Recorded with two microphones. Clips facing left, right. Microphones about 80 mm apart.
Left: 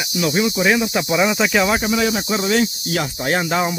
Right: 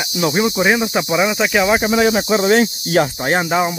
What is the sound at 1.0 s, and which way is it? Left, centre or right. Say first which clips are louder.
Cricket: right 1 dB; centre.